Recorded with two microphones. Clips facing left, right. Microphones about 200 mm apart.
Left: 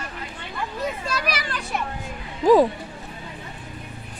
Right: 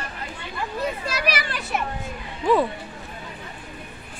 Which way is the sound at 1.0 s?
5° right (ahead or behind).